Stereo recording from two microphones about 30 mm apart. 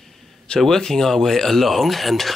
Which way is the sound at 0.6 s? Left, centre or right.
Centre.